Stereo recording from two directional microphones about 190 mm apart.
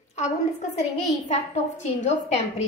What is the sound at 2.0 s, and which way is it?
Speech, 35° left (ahead or behind).